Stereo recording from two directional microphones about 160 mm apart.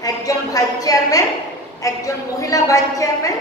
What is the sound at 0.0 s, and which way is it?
A woman's voice, 20° left (ahead or behind).